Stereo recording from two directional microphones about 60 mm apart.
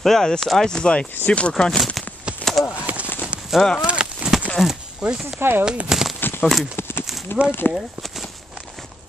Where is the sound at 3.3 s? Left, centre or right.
Centre.